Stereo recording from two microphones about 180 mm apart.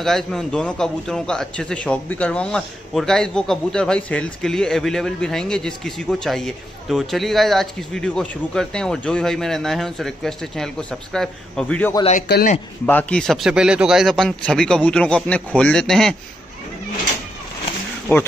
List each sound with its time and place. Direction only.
0.0 s a man's voice: centre (ahead or behind)
12.2 s speech: 55° left (ahead or behind)
12.8 s a man's voice: 10° left (ahead or behind)
18.1 s speech: 10° left (ahead or behind)